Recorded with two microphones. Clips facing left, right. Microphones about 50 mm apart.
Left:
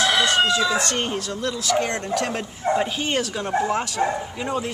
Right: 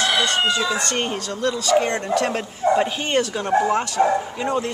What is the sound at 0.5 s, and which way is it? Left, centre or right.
Speech, centre.